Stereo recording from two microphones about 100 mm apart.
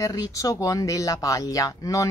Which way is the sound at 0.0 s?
35° left (ahead or behind).